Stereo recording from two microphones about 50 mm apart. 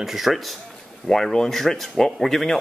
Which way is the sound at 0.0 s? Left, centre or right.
Centre.